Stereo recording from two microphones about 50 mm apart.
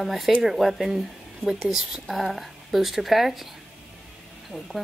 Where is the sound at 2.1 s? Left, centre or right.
Centre.